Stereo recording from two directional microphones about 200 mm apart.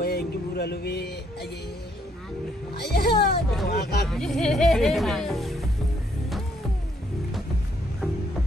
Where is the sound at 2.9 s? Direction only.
55° left (ahead or behind).